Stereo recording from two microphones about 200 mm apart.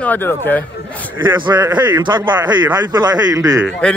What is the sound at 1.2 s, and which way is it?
A man's voice, 20° right (ahead or behind).